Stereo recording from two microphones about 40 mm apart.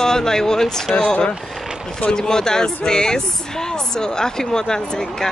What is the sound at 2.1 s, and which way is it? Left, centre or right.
Speech, centre.